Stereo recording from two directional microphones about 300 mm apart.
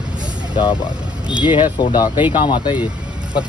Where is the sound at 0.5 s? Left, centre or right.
Centre.